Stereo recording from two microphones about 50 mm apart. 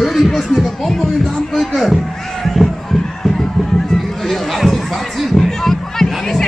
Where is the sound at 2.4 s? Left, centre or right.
Centre.